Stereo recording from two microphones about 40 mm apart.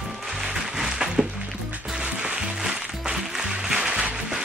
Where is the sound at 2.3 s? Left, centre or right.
Centre.